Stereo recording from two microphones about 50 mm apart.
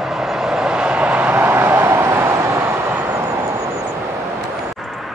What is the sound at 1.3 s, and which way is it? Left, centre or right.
Vehicle, right.